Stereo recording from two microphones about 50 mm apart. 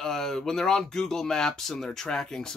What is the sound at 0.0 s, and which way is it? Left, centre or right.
Speech, centre.